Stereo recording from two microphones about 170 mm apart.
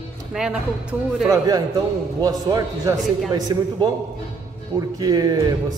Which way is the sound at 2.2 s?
20° right (ahead or behind).